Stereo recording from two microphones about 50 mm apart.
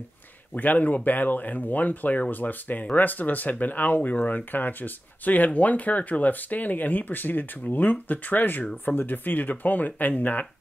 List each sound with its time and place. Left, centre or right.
0.6 s speech: left